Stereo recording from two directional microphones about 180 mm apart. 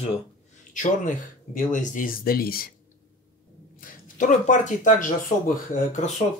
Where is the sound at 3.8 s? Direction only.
45° left (ahead or behind).